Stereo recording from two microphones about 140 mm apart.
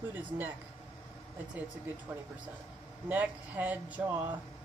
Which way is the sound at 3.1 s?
10° right (ahead or behind).